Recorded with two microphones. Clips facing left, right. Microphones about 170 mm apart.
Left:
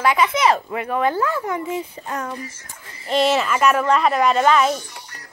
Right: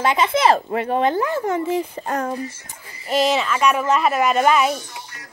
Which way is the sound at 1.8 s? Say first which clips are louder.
Right 4 dB; 45° right (ahead or behind).